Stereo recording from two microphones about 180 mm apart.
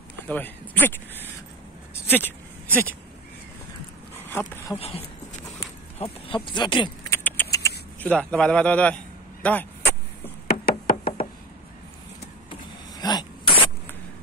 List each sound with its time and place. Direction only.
0.3 s speech: 10° left (ahead or behind)
4.3 s speech: 15° left (ahead or behind)
4.7 s speech: 35° left (ahead or behind)
7.1 s rodents: 10° left (ahead or behind)
8.0 s speech: 5° left (ahead or behind)
9.4 s vehicle: 10° left (ahead or behind)
10.6 s knock: 55° left (ahead or behind)
12.4 s power windows: 25° left (ahead or behind)